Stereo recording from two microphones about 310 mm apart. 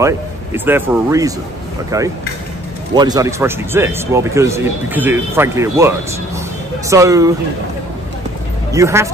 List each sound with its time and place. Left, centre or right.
0.0 s speech: centre
8.7 s speech: centre